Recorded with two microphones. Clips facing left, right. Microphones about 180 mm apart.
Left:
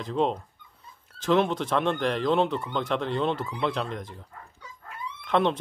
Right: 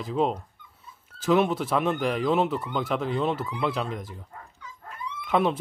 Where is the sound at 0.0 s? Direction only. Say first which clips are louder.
Even; 5° right (ahead or behind).